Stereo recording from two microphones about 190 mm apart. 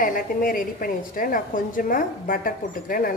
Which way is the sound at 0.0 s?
45° left (ahead or behind).